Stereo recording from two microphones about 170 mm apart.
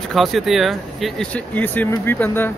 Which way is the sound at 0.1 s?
Centre (ahead or behind).